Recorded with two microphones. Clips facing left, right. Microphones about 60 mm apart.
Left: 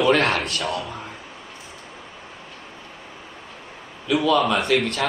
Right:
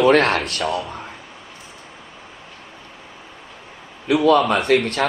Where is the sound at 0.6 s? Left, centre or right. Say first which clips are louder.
Right 3 dB; centre.